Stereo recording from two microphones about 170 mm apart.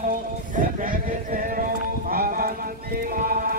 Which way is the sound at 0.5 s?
55° right (ahead or behind).